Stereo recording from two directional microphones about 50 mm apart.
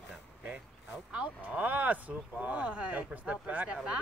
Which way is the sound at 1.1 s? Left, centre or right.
Right.